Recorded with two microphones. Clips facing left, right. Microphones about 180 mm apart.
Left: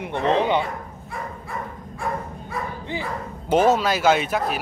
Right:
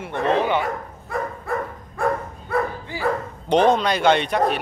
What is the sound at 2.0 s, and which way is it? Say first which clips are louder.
Dog: right 6 dB; 60° right (ahead or behind).